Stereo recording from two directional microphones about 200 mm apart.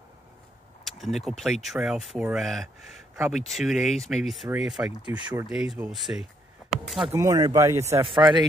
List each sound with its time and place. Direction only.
0.8 s speech: centre (ahead or behind)
6.8 s a sound: centre (ahead or behind)
7.1 s speech: 15° right (ahead or behind)